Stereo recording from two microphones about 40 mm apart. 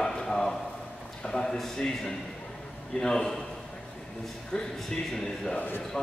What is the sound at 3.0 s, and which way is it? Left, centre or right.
Speech, centre.